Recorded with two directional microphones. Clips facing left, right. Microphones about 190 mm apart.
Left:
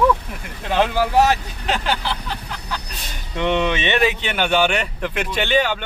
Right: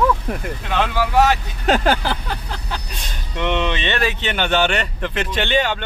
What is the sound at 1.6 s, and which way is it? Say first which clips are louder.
Speech: right 5 dB; 45° right (ahead or behind).